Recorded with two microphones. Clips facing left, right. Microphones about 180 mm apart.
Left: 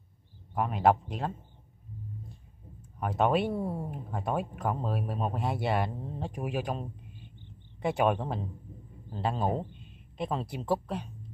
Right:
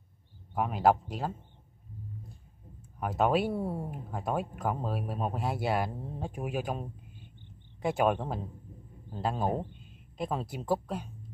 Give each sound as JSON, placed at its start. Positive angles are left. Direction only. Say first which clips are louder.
{"t": 0.6, "sound": "speech", "louder": "even", "side_deg": 0}
{"t": 3.0, "sound": "speech", "louder": "even", "side_deg": 0}